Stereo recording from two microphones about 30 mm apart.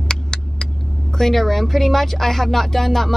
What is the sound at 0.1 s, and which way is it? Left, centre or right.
Vehicle, centre.